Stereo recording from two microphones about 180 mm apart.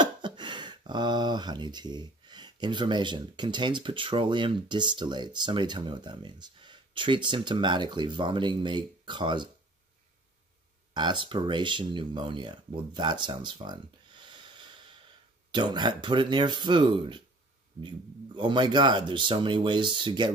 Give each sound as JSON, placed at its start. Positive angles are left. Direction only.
{"t": 0.0, "sound": "speech", "side_deg": -25}
{"t": 10.9, "sound": "speech", "side_deg": -25}